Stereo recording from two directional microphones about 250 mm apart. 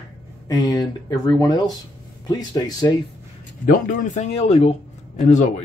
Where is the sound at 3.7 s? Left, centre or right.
Left.